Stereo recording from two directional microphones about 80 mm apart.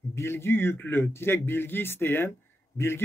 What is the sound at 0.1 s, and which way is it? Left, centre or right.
A man's voice, left.